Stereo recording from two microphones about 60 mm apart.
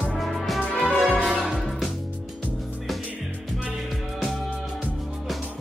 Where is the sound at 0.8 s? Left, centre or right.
Left.